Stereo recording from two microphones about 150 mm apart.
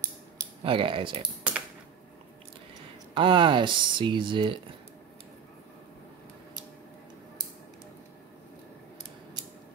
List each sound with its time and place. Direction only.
0.7 s speech: 35° right (ahead or behind)
3.2 s speech: 30° right (ahead or behind)